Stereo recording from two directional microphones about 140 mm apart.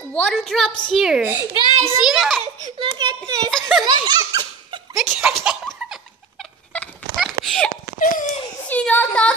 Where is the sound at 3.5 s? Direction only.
Centre (ahead or behind).